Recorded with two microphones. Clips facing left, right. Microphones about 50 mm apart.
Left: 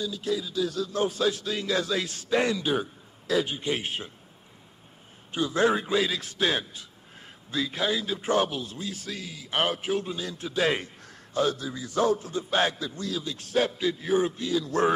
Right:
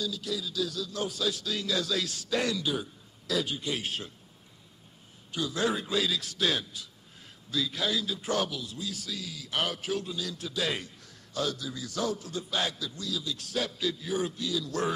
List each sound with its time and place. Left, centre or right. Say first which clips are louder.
0.0 s a man's voice: left 4 dB; left
5.3 s a man's voice: left 6 dB; left